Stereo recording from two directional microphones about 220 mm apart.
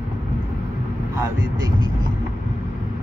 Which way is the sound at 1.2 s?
20° right (ahead or behind).